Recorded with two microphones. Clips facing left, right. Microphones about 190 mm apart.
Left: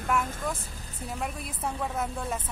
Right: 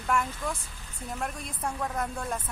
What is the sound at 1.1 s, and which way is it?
Speech, 5° left (ahead or behind).